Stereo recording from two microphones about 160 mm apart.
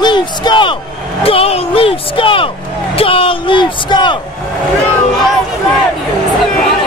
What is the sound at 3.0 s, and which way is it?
Speech, 35° left (ahead or behind).